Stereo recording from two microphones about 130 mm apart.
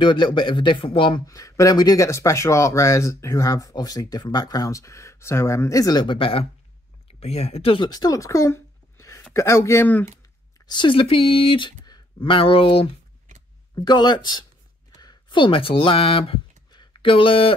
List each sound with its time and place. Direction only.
0.0 s a man's voice: 35° left (ahead or behind)
1.2 s speech: 25° left (ahead or behind); by 6.4 s 40° left (ahead or behind)
7.1 s speech: 50° left (ahead or behind)
7.9 s a sound: 30° left (ahead or behind)
9.3 s speech: 25° left (ahead or behind)
10.7 s speech: 40° left (ahead or behind)
13.7 s a man's voice: 35° left (ahead or behind)